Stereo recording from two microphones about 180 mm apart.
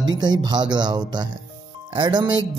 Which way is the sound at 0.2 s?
25° right (ahead or behind).